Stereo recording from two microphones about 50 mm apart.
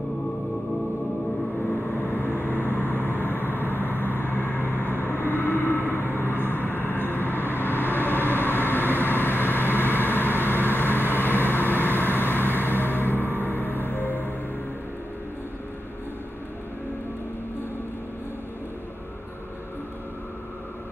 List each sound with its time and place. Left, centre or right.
1.7 s vehicle: left
13.4 s music: left